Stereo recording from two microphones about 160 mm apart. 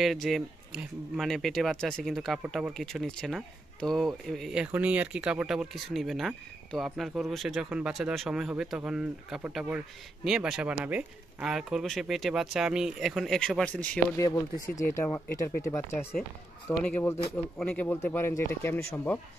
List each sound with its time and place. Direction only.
0.0 s speech: centre (ahead or behind)
14.1 s speech: 20° left (ahead or behind)